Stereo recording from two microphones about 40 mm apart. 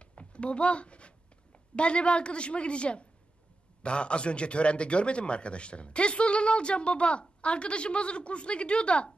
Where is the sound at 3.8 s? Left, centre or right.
Left.